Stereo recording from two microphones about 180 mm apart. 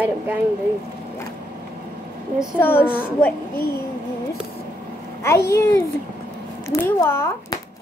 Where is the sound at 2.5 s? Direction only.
10° left (ahead or behind).